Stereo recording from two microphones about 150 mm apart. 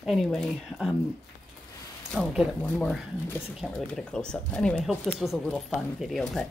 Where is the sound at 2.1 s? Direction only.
Centre (ahead or behind).